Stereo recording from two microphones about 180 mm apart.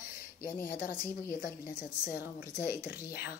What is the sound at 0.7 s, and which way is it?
A woman's voice, 55° left (ahead or behind).